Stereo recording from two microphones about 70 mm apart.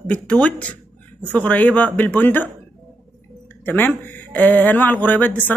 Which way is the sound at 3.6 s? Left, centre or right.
Left.